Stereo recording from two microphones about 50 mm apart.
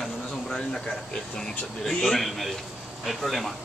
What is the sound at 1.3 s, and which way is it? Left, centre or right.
Speech, centre.